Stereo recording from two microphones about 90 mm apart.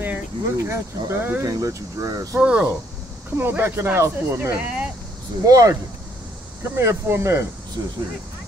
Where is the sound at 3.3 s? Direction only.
25° right (ahead or behind).